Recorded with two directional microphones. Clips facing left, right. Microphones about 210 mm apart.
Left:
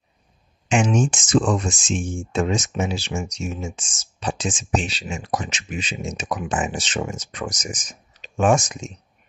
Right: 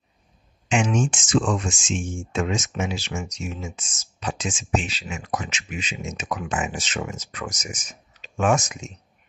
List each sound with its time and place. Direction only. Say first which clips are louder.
0.7 s speech: left 3 dB; 40° left (ahead or behind)